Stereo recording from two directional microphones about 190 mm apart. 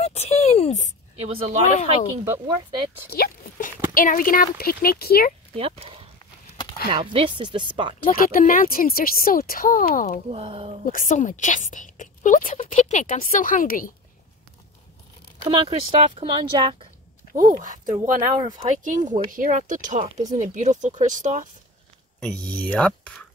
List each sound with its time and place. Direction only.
0.0 s a sound: 35° left (ahead or behind)
1.1 s speech: 30° right (ahead or behind)
2.3 s speech: 20° right (ahead or behind)
3.1 s a sound: 50° left (ahead or behind)
3.9 s speech: 45° left (ahead or behind)
5.6 s speech: 30° right (ahead or behind)
8.1 s speech: 50° left (ahead or behind)
10.3 s speech: 30° right (ahead or behind)
10.9 s speech: 45° left (ahead or behind)
15.4 s speech: 30° right (ahead or behind)
17.4 s speech: 45° right (ahead or behind)
22.2 s speech: 5° left (ahead or behind)